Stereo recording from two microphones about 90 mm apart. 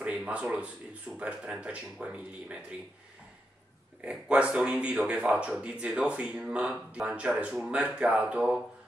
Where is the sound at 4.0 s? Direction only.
10° right (ahead or behind).